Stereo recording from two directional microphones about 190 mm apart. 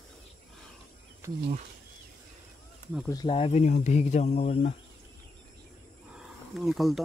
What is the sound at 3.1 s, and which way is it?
Speech, 20° left (ahead or behind).